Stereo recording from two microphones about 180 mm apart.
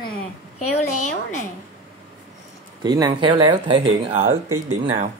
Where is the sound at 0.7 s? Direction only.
40° left (ahead or behind).